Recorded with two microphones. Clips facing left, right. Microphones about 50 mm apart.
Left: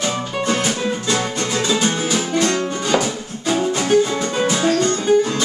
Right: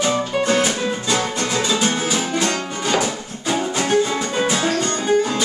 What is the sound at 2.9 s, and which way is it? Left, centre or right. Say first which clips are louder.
Music: right 1 dB; centre.